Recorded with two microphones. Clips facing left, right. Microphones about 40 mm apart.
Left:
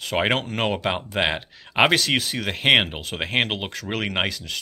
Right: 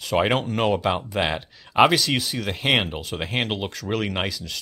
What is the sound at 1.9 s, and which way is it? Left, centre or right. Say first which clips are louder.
Speech: left 1 dB; left.